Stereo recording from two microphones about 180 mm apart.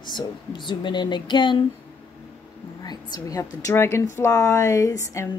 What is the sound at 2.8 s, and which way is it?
A woman's voice, 20° left (ahead or behind).